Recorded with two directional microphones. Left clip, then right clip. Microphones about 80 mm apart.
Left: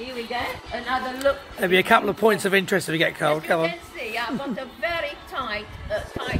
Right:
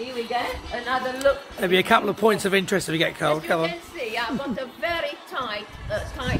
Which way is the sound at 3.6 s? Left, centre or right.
Right.